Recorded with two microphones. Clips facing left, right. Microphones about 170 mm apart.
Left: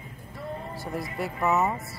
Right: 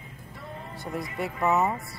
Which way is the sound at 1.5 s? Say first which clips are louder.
Even; centre (ahead or behind).